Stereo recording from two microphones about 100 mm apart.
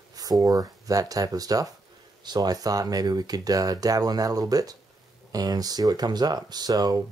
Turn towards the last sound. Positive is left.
turn(degrees=-45)  # may be behind; listen again after turning